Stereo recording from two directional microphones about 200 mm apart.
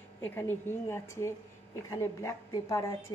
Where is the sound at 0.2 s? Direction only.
10° left (ahead or behind).